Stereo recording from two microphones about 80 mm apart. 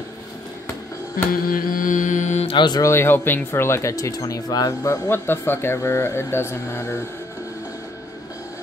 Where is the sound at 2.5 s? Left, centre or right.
Left.